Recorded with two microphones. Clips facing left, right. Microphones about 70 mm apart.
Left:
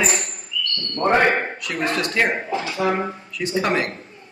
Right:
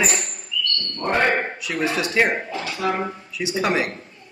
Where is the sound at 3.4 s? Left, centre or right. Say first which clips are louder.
Left 1 dB; centre.